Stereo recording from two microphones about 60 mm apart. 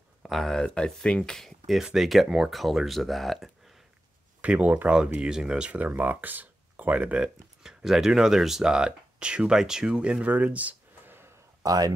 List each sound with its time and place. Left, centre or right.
0.3 s speech: centre
1.8 s speech: centre
4.4 s speech: right
4.9 s speech: centre
5.8 s speech: right
7.6 s speech: centre; by 11.1 s right
11.6 s speech: right